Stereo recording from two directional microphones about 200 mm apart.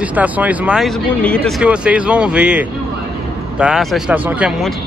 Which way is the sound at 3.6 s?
Centre (ahead or behind).